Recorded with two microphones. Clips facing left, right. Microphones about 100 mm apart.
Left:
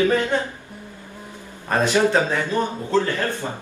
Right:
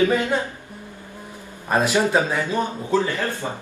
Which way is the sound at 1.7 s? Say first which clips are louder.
Left 1 dB; 15° right (ahead or behind).